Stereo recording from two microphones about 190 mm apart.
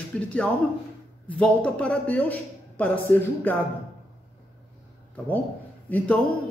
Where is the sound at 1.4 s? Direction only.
5° left (ahead or behind).